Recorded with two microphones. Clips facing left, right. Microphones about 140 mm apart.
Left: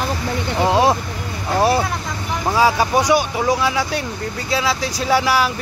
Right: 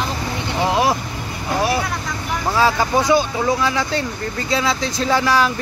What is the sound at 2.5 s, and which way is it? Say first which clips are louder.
Speech: left 1 dB; 10° left (ahead or behind).